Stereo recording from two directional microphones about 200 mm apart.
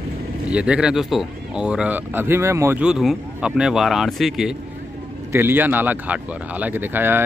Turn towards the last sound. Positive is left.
turn(degrees=-10)  # may be behind; listen again after turning